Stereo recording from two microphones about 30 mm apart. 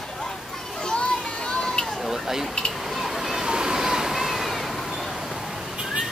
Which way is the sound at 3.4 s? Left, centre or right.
Right.